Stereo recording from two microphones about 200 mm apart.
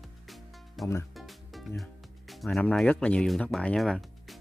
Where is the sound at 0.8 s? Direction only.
Centre (ahead or behind).